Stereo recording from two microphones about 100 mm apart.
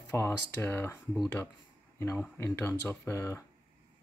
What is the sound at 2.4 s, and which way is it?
Speech, 25° left (ahead or behind).